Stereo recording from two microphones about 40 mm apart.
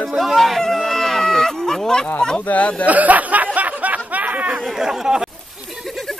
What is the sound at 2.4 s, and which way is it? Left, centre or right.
Speech, left.